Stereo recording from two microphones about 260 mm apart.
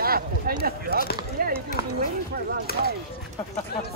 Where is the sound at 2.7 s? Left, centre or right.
Left.